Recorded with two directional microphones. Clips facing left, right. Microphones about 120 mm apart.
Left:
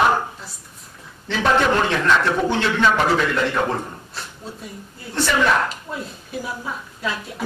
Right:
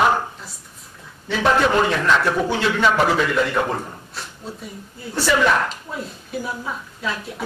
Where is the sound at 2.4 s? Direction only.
10° right (ahead or behind).